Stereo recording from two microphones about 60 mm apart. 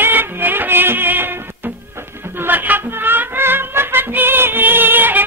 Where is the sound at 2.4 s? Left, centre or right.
Right.